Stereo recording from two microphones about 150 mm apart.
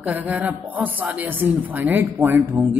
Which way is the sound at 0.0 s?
10° right (ahead or behind).